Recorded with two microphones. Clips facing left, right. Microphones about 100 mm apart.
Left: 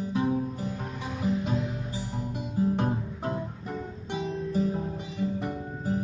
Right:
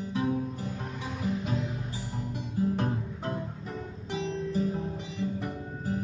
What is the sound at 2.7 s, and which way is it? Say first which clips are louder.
Music: left 2 dB; 20° left (ahead or behind).